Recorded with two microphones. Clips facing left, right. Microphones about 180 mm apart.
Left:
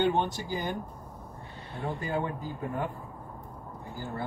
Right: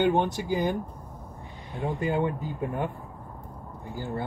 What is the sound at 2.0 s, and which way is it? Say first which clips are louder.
Speech: right 6 dB; 20° right (ahead or behind).